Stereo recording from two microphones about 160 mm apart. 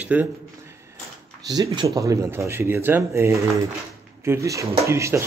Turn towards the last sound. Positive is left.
turn(degrees=-20)  # may be behind; listen again after turning